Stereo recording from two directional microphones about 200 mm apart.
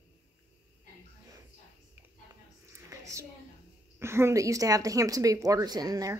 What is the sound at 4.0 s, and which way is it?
Speech, 10° right (ahead or behind).